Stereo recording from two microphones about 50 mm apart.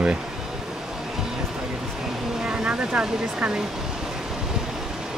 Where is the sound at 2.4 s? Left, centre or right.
Right.